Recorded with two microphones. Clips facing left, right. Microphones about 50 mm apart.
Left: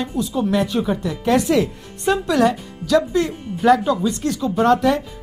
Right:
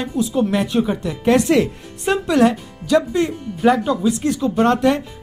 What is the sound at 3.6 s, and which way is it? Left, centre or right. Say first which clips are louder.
Speech: left 1 dB; centre.